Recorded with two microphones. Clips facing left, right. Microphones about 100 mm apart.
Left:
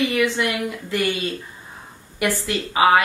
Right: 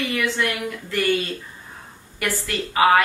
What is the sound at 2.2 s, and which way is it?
Speech, 15° left (ahead or behind).